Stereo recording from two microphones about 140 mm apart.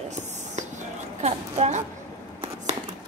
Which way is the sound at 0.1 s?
55° right (ahead or behind).